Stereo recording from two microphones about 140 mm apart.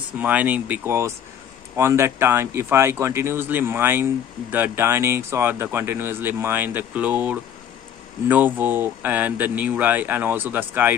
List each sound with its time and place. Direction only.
0.2 s speech: 10° right (ahead or behind)